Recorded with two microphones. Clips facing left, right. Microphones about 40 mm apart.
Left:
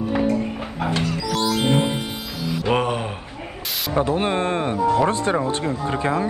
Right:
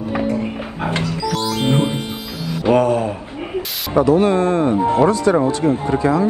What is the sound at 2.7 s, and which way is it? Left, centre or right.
Speech, left.